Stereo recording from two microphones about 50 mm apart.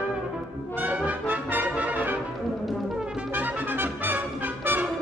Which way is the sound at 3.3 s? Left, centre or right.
Right.